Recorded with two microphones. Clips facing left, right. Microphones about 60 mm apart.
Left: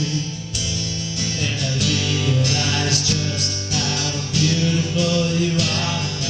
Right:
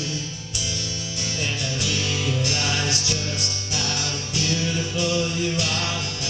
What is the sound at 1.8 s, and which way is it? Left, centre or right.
Music, centre.